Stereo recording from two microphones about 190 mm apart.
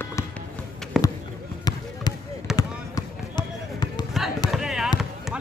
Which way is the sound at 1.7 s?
20° left (ahead or behind).